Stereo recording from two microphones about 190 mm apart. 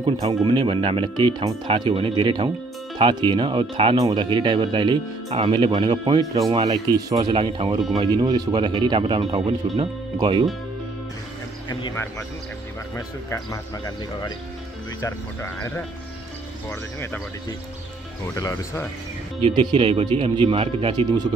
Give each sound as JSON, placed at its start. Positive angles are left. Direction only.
{"t": 0.0, "sound": "speech", "side_deg": -25}
{"t": 11.7, "sound": "speech", "side_deg": 15}
{"t": 18.2, "sound": "speech", "side_deg": 15}
{"t": 19.4, "sound": "speech", "side_deg": -25}